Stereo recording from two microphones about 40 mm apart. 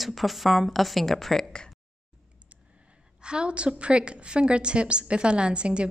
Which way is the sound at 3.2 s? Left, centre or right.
Right.